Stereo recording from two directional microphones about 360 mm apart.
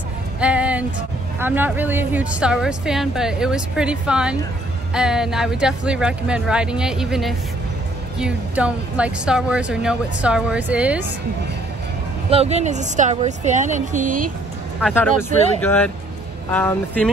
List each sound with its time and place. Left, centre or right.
0.4 s music: centre
1.4 s a woman's voice: centre
12.3 s a woman's voice: centre
14.8 s a woman's voice: centre